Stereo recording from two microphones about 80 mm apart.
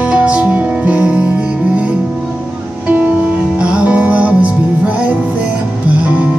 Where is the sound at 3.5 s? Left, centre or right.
Centre.